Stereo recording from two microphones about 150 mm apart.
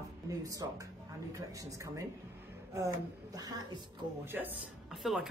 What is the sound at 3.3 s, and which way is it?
Speech, 25° right (ahead or behind).